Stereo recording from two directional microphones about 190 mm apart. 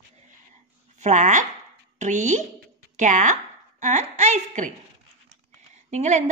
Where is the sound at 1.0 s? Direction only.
40° right (ahead or behind).